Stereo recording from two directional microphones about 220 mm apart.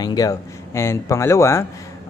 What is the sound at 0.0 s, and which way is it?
A man's voice, 15° left (ahead or behind).